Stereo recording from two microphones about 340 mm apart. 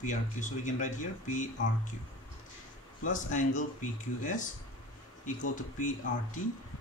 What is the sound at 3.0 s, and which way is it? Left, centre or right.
Speech, left.